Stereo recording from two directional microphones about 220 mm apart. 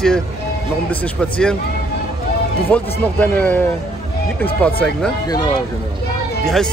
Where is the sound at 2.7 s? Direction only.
5° left (ahead or behind).